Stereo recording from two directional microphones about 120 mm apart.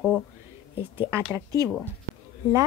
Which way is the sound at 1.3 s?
30° right (ahead or behind).